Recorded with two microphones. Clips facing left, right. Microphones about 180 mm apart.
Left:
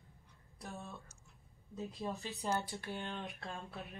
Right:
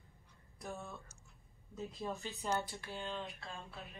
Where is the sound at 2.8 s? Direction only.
55° left (ahead or behind).